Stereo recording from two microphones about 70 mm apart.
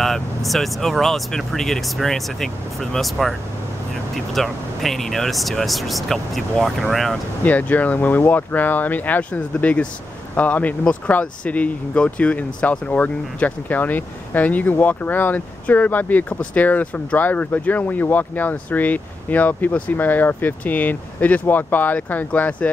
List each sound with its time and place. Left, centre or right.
0.0 s speech: centre
7.4 s speech: left